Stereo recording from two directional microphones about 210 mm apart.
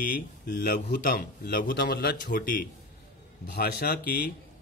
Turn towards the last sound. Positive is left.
turn(degrees=45)  # may be behind; listen again after turning